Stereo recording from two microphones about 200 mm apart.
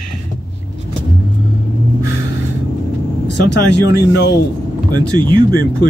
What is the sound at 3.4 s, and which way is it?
Speech, 60° left (ahead or behind).